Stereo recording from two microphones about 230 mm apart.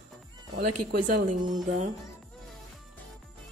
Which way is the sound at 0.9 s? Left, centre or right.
Right.